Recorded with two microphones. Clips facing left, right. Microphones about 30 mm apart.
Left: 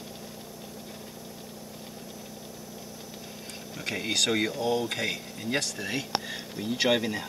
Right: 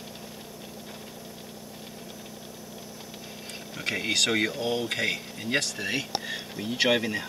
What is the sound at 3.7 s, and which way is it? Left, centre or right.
Speech, centre.